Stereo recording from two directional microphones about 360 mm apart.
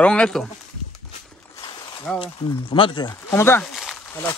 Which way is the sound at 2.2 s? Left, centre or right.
Centre.